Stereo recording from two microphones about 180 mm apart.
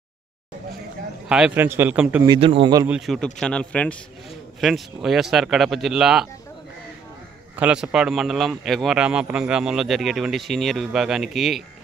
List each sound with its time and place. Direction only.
1.3 s a man's voice: 5° right (ahead or behind)
2.2 s a man's voice: 30° right (ahead or behind)
2.9 s a man's voice: centre (ahead or behind)
7.5 s a man's voice: 5° right (ahead or behind)